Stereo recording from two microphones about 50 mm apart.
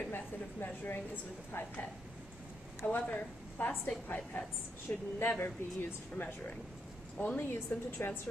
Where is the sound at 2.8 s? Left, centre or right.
Left.